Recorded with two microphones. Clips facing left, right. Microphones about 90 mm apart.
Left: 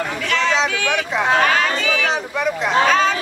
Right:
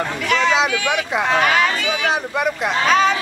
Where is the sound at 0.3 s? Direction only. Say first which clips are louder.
Right 2 dB; 15° right (ahead or behind).